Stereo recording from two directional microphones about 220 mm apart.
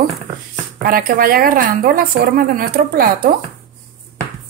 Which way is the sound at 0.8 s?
40° right (ahead or behind).